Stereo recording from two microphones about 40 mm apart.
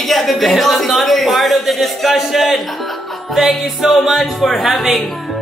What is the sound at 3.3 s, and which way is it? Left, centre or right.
Speech, centre.